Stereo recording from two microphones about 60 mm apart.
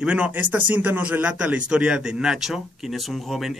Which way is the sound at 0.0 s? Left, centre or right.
Centre.